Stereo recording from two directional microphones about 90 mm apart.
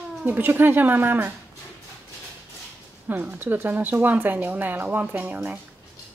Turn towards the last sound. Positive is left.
turn(degrees=-20)  # may be behind; listen again after turning